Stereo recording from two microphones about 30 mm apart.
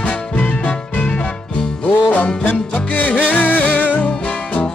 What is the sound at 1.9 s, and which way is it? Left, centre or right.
Music, left.